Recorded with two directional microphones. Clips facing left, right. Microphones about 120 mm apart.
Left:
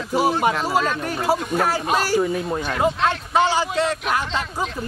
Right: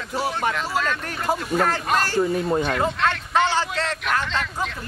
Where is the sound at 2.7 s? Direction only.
15° left (ahead or behind).